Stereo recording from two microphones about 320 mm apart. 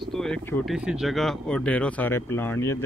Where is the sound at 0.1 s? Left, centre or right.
Centre.